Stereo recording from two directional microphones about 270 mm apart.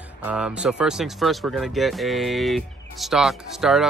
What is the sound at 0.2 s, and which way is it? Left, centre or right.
Speech, centre.